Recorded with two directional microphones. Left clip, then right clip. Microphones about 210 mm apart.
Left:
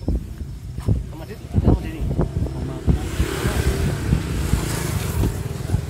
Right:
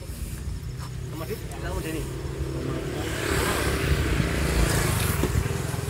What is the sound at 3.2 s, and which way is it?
Vehicle, 45° left (ahead or behind).